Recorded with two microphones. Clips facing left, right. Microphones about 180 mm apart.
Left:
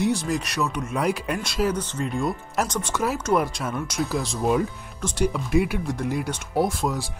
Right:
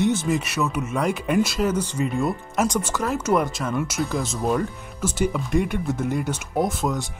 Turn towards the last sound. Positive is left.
turn(degrees=0)  # may be behind; listen again after turning